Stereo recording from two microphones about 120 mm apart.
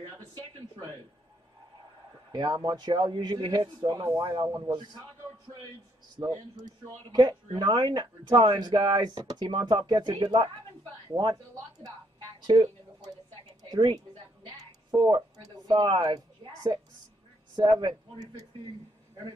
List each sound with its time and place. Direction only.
2.3 s speech: 40° right (ahead or behind)
6.1 s speech: 30° right (ahead or behind)
12.4 s a sound: 35° right (ahead or behind)
13.7 s a woman's voice: 35° right (ahead or behind)
17.6 s speech: 35° right (ahead or behind)